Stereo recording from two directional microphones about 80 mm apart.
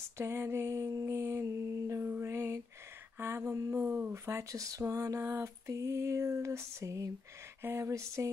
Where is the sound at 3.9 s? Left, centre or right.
Right.